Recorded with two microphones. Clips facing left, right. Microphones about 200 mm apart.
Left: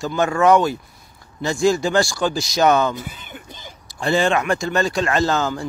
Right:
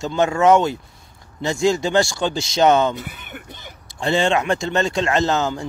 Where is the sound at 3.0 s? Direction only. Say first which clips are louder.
Even; 65° right (ahead or behind).